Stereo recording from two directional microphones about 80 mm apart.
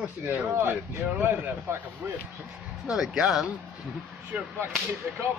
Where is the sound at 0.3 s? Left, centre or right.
Right.